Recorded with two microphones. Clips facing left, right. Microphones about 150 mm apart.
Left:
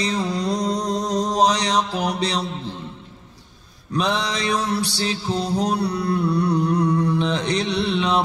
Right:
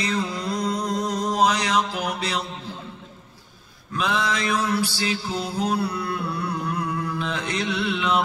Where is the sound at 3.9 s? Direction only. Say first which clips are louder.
Left 2 dB; 35° left (ahead or behind).